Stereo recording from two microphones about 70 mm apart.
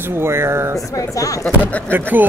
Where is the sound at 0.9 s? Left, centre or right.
Left.